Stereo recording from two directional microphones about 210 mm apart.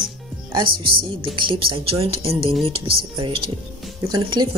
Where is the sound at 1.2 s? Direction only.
25° right (ahead or behind).